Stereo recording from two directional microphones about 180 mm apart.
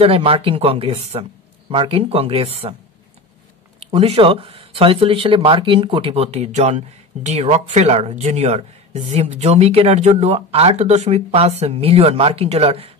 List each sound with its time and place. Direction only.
0.0 s speech: 30° right (ahead or behind)
3.9 s speech: 35° right (ahead or behind)